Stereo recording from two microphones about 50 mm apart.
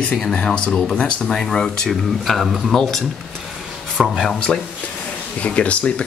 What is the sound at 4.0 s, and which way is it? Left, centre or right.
Speech, centre.